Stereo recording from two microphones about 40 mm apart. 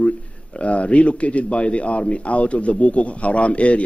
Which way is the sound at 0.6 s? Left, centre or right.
Left.